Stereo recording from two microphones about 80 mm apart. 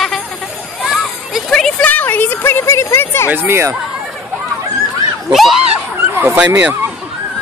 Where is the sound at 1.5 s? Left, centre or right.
Centre.